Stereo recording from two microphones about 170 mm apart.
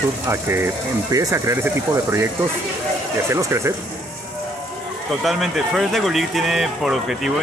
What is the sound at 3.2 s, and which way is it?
Speech, 15° right (ahead or behind).